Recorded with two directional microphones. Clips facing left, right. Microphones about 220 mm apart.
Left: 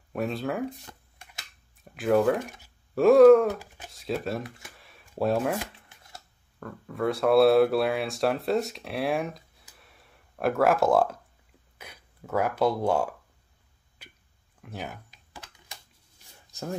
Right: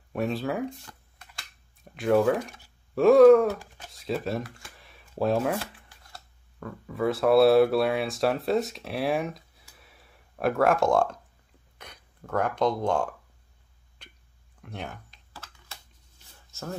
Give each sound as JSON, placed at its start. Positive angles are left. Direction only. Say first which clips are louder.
{"t": 0.1, "sound": "speech", "louder": "right 1 dB", "side_deg": 0}
{"t": 0.8, "sound": "a sound", "louder": "left 1 dB", "side_deg": 20}
{"t": 2.0, "sound": "speech", "louder": "even", "side_deg": 0}
{"t": 4.4, "sound": "speech", "louder": "right 2 dB", "side_deg": 20}
{"t": 4.7, "sound": "a sound", "louder": "even", "side_deg": 0}
{"t": 5.2, "sound": "speech", "louder": "even", "side_deg": 0}
{"t": 5.5, "sound": "shuffling cards", "louder": "even", "side_deg": 20}
{"t": 6.6, "sound": "speech", "louder": "right 1 dB", "side_deg": 0}
{"t": 14.0, "sound": "a sound", "louder": "left 1 dB", "side_deg": 5}
{"t": 14.6, "sound": "speech", "louder": "even", "side_deg": 5}
{"t": 15.3, "sound": "computer keyboard", "louder": "left 1 dB", "side_deg": 15}
{"t": 16.5, "sound": "a sound", "louder": "left 3 dB", "side_deg": 15}